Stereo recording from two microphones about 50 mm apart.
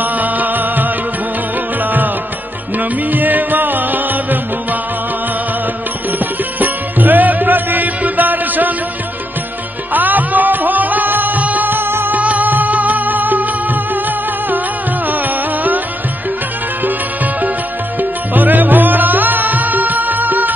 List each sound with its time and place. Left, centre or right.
0.0 s music: right
6.1 s music: right
9.9 s music: right
12.2 s music: right
16.8 s music: right